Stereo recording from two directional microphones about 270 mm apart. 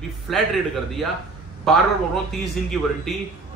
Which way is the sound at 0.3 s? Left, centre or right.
Centre.